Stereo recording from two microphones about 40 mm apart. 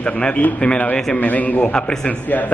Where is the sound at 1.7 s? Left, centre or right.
Left.